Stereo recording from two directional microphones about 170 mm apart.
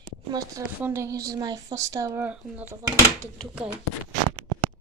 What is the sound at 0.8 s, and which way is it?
Speech, 15° right (ahead or behind).